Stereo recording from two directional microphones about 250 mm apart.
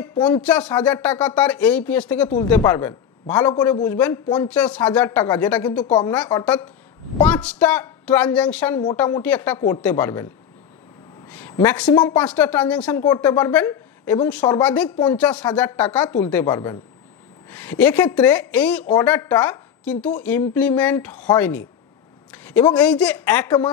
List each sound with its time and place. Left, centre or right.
0.2 s a man's voice: centre
11.2 s speech: centre
11.9 s a man's voice: centre
12.3 s a man's voice: centre
22.3 s a sound: centre
22.8 s speech: centre